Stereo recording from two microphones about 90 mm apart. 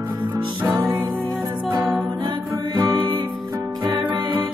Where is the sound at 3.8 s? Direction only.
55° right (ahead or behind).